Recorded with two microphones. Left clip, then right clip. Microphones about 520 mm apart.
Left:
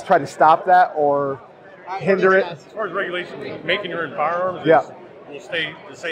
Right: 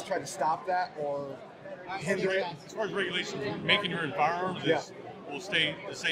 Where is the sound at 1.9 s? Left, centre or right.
Left.